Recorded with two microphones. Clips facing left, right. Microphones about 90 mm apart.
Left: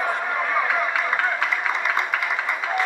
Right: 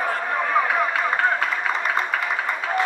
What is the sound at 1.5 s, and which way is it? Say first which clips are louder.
Applause: even; 35° right (ahead or behind).